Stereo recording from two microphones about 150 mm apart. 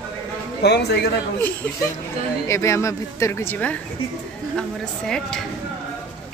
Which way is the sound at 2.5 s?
20° left (ahead or behind).